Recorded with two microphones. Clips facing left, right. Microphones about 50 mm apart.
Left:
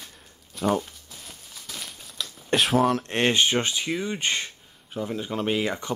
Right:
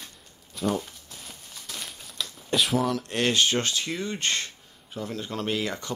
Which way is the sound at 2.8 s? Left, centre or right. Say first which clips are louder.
Left 3 dB; left.